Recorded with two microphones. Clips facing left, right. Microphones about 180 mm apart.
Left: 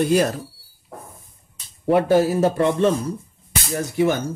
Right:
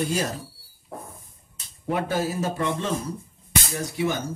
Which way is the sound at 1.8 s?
65° left (ahead or behind).